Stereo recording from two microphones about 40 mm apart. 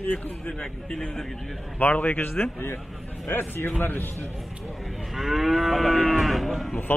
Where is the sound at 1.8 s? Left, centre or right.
Left.